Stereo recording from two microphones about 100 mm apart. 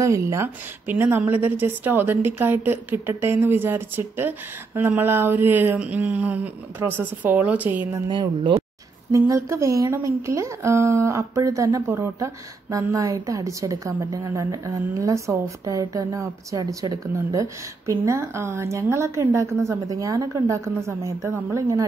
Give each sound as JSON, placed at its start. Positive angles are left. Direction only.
{"t": 0.0, "sound": "a woman's voice", "side_deg": -30}
{"t": 8.1, "sound": "speech", "side_deg": -50}
{"t": 9.1, "sound": "a woman's voice", "side_deg": -30}